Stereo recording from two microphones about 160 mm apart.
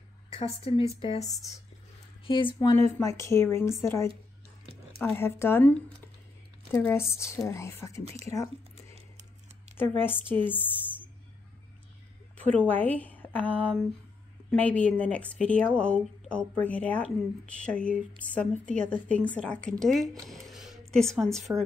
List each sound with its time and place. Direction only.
0.3 s a woman's voice: 35° left (ahead or behind)
1.2 s a woman's voice: centre (ahead or behind)
2.2 s speech: 30° left (ahead or behind)
3.0 s speech: 20° left (ahead or behind)
8.0 s speech: 40° right (ahead or behind)
8.7 s chewing: 40° right (ahead or behind)
9.8 s speech: 15° left (ahead or behind)
12.4 s speech: 10° left (ahead or behind)
18.8 s a woman's voice: 55° right (ahead or behind)
19.0 s a woman's voice: 10° left (ahead or behind)
20.2 s a sound: centre (ahead or behind)
20.9 s a woman's voice: 5° left (ahead or behind)